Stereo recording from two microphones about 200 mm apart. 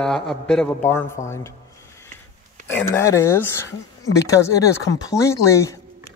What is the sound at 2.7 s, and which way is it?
Speech, 10° left (ahead or behind).